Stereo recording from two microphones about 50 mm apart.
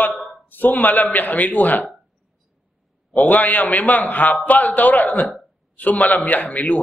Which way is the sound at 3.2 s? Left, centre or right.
Left.